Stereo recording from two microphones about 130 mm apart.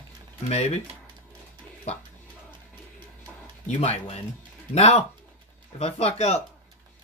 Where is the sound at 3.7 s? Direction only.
60° left (ahead or behind).